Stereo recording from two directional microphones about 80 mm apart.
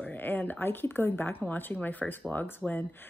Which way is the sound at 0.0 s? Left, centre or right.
Left.